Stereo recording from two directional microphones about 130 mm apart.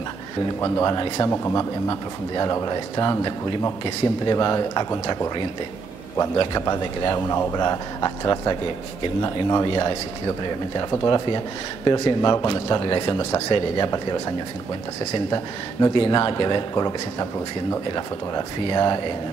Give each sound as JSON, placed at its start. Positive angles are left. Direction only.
{"t": 0.6, "sound": "speech", "side_deg": 25}
{"t": 15.9, "sound": "speech", "side_deg": 40}